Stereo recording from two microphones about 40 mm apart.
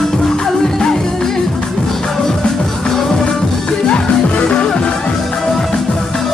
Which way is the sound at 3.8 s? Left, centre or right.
Left.